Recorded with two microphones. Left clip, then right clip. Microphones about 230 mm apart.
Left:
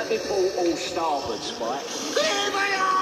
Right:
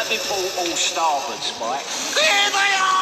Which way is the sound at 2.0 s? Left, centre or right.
Right.